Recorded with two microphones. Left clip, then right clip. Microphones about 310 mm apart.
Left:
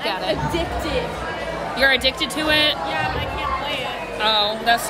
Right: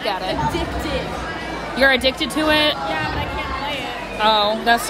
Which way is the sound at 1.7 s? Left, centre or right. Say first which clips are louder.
Right 2 dB; centre.